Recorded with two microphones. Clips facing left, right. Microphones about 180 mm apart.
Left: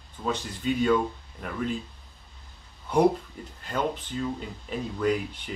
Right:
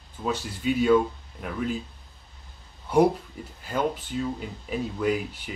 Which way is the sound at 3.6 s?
5° right (ahead or behind).